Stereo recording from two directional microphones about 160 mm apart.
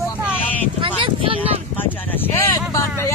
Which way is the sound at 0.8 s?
35° right (ahead or behind).